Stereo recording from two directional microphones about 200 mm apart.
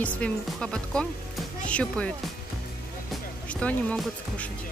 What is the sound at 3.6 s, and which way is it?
Speech, 5° left (ahead or behind).